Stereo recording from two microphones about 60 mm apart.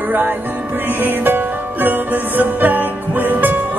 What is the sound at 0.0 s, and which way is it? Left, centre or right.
Music, right.